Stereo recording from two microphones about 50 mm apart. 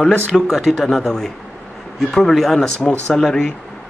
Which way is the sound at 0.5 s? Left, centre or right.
Centre.